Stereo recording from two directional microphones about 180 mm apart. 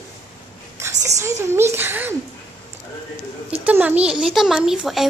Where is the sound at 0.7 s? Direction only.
15° right (ahead or behind).